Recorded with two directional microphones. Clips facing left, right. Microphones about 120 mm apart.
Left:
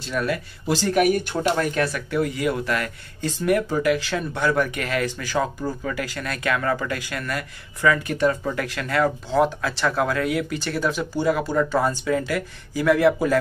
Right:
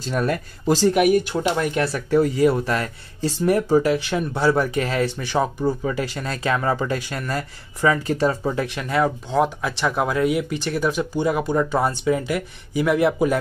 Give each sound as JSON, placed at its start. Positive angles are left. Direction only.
{"t": 0.0, "sound": "speech", "side_deg": -40}
{"t": 0.9, "sound": "speech", "side_deg": -10}
{"t": 1.8, "sound": "speech", "side_deg": -30}